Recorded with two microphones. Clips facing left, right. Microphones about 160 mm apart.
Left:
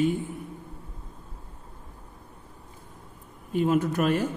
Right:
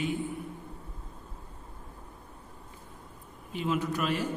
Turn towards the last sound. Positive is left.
turn(degrees=50)  # may be behind; listen again after turning